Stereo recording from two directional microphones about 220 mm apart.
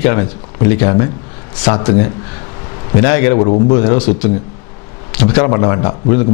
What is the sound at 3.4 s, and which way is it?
Speech, 30° left (ahead or behind).